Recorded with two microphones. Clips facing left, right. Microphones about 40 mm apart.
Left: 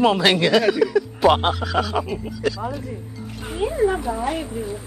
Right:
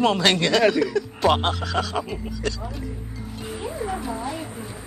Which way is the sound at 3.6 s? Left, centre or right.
Left.